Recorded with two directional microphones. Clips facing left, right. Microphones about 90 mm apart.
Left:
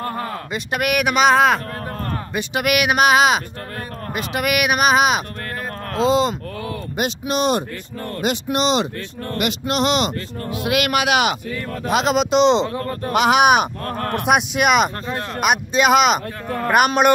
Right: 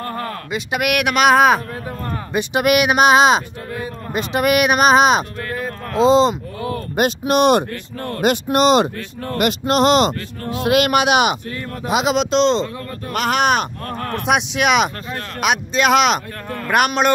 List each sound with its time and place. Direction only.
0.0 s a sound: 10° left (ahead or behind)
0.5 s speech: 5° right (ahead or behind)
2.3 s speech: 25° right (ahead or behind)
7.0 s speech: 50° right (ahead or behind)
8.2 s speech: 50° right (ahead or behind); by 11.3 s 20° right (ahead or behind)
11.8 s speech: 5° right (ahead or behind)
12.2 s speech: 10° left (ahead or behind)
12.7 s speech: 35° left (ahead or behind)
13.1 s speech: 15° left (ahead or behind)
13.8 s speech: 45° left (ahead or behind)
14.2 s speech: 5° left (ahead or behind)